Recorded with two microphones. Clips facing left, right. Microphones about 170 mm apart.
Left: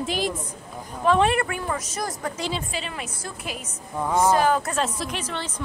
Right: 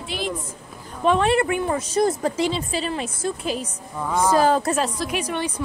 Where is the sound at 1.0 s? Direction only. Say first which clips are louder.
Right 2 dB; 20° right (ahead or behind).